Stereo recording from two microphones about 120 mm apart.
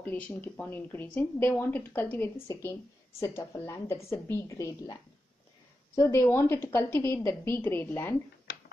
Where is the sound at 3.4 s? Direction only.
25° left (ahead or behind).